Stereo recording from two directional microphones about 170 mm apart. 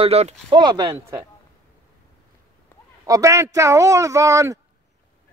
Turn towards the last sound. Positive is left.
turn(degrees=-20)  # may be behind; listen again after turning